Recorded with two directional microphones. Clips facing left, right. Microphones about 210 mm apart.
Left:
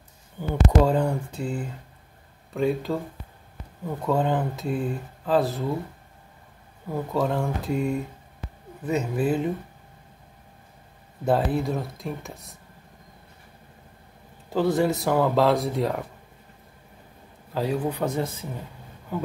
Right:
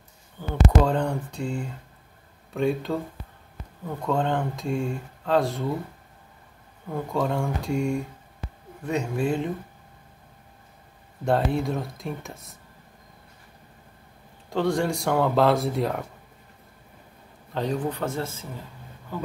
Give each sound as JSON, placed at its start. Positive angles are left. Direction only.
{"t": 0.4, "sound": "speech", "side_deg": 10}
{"t": 6.9, "sound": "speech", "side_deg": 5}
{"t": 11.2, "sound": "speech", "side_deg": 0}
{"t": 14.5, "sound": "speech", "side_deg": 5}
{"t": 17.6, "sound": "speech", "side_deg": 10}